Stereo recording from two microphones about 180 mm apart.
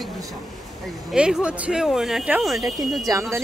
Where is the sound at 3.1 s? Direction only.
20° right (ahead or behind).